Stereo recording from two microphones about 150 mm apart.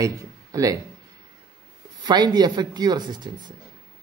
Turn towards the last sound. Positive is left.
turn(degrees=-30)  # may be behind; listen again after turning